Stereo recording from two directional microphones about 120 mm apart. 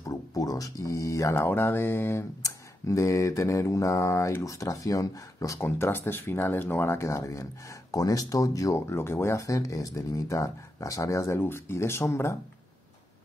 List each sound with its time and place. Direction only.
0.0 s speech: 30° left (ahead or behind)